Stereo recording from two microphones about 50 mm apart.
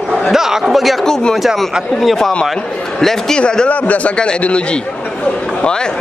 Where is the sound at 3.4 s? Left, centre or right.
Centre.